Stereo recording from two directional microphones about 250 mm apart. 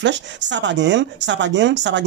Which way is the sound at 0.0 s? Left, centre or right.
Right.